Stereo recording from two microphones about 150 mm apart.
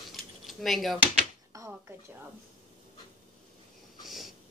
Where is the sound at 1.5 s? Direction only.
20° right (ahead or behind).